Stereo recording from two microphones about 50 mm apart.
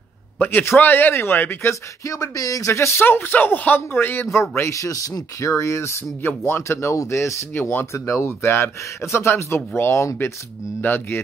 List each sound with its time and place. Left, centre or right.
0.5 s a man's voice: left
1.7 s speech: left
3.0 s a man's voice: left
4.3 s speech: left
6.2 s speech: left
9.8 s speech: left
10.8 s speech: left